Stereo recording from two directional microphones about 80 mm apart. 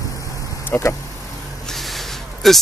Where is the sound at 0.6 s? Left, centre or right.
Left.